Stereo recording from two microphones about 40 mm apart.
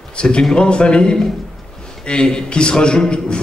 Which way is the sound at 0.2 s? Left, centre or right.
Left.